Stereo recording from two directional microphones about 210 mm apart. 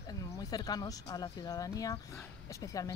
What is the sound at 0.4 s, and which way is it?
Speech, 20° left (ahead or behind).